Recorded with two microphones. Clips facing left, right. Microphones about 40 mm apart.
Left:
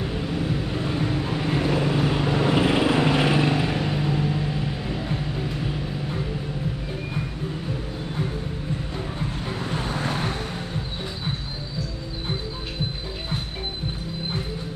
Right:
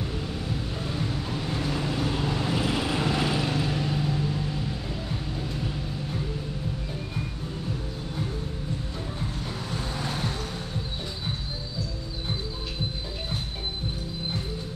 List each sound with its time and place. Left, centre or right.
0.0 s vehicle: left
9.5 s vehicle: left